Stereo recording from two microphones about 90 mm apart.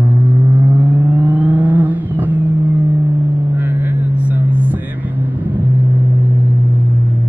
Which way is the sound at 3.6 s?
25° right (ahead or behind).